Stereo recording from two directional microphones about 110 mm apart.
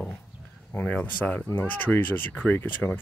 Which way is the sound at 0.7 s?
15° left (ahead or behind).